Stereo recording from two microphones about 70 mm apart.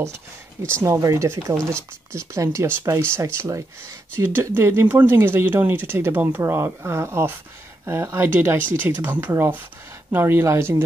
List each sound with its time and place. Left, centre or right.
0.0 s speech: right
4.6 s speech: right